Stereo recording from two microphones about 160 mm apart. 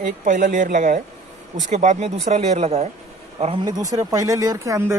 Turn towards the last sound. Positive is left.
turn(degrees=-20)  # may be behind; listen again after turning